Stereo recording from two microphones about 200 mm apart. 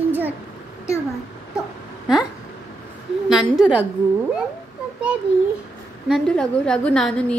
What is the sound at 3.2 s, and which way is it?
Speech, 5° right (ahead or behind).